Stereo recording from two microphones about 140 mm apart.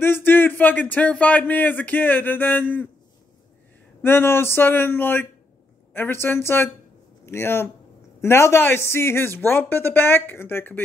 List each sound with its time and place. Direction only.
0.0 s speech: 15° left (ahead or behind)
4.0 s speech: 15° left (ahead or behind)